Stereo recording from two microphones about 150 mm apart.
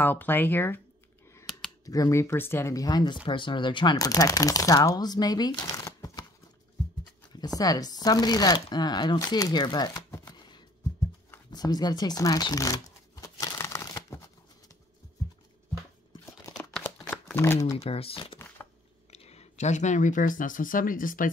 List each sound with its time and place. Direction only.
0.0 s speech: 15° left (ahead or behind)
1.9 s speech: 20° left (ahead or behind)
7.3 s speech: 25° left (ahead or behind)
11.2 s shuffling cards: 25° left (ahead or behind)
16.5 s a sound: 5° left (ahead or behind)
17.7 s speech: 40° left (ahead or behind); by 21.3 s 65° left (ahead or behind)